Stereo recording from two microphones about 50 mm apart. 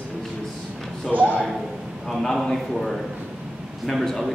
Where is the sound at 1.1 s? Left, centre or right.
Right.